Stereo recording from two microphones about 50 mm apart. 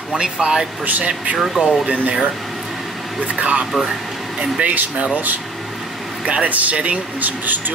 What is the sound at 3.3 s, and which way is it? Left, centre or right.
Speech, right.